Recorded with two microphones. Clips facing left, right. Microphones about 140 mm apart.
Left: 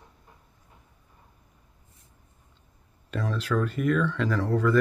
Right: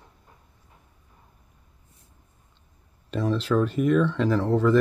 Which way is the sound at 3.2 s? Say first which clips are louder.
Right 5 dB; 20° right (ahead or behind).